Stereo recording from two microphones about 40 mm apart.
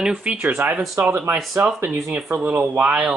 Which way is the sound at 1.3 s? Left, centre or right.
Right.